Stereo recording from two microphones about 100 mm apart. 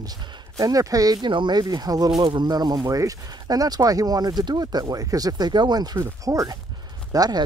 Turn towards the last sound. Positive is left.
turn(degrees=-40)  # may be behind; listen again after turning